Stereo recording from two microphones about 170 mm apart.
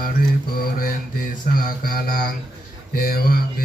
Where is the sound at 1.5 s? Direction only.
55° left (ahead or behind).